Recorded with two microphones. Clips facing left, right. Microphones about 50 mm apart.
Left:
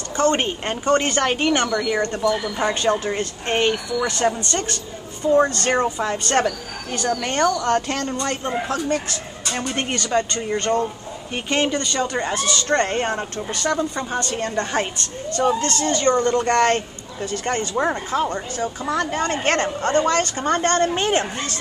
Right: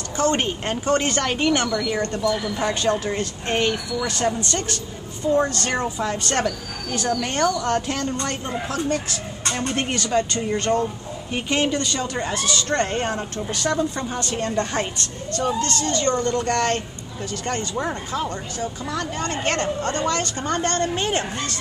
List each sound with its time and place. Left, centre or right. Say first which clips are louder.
0.2 s speech: left 2 dB; centre
4.1 s speech: left 2 dB; centre
14.2 s speech: left 1 dB; centre
14.5 s speech: left 1 dB; centre
15.3 s speech: left 3 dB; left
16.1 s speech: left 5 dB; centre
16.4 s speech: left 4 dB; left
20.6 s a woman's voice: left 4 dB; left